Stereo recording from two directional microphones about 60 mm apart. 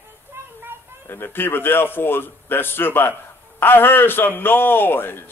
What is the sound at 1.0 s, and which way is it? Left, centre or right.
A man's voice, left.